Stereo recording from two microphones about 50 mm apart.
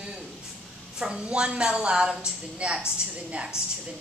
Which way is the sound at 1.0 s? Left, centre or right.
Centre.